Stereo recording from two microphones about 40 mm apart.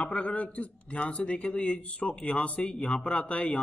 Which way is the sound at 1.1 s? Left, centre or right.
Left.